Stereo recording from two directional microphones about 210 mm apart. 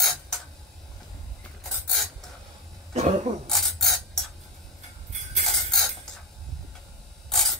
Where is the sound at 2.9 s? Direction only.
35° right (ahead or behind).